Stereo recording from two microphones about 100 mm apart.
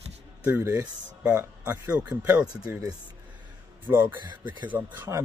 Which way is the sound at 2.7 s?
25° right (ahead or behind).